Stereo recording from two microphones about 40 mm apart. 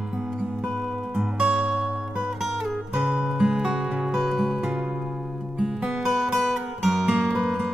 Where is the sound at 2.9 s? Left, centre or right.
Centre.